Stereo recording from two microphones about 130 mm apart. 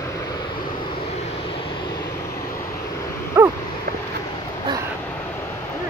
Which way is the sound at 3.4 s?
20° right (ahead or behind).